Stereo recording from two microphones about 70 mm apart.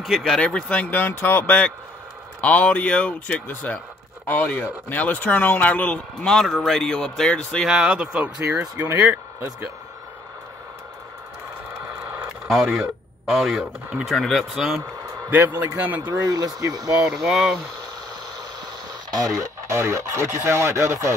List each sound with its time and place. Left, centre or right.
0.0 s speech: centre
0.4 s speech: centre
6.4 s speech: centre
7.6 s speech: centre
8.7 s speech: right
12.4 s speech: centre
15.2 s a man's voice: right
16.0 s speech: right
17.0 s speech: centre
18.9 s speech: right